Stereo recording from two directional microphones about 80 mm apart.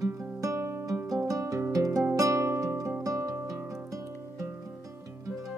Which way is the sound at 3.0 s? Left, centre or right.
Right.